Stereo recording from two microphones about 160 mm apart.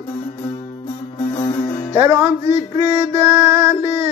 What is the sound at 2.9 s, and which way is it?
Music, 15° right (ahead or behind).